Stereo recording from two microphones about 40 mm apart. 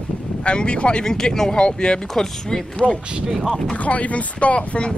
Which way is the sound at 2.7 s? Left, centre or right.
Left.